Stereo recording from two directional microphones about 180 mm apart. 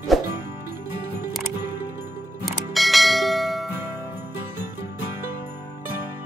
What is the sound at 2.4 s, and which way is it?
Church bell, centre (ahead or behind).